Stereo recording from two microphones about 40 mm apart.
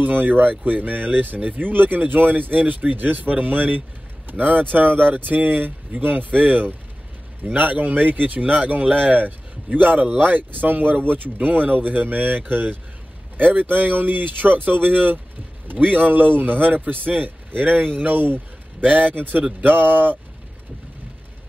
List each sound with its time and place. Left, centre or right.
0.0 s speech: right
8.4 s speech: right